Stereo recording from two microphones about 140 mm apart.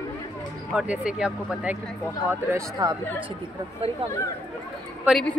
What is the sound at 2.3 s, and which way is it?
Speech, 20° right (ahead or behind).